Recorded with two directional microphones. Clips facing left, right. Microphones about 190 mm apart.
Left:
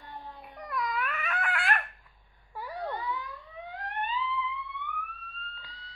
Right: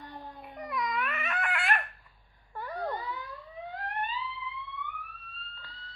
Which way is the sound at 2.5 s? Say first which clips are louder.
Right 1 dB; 10° left (ahead or behind).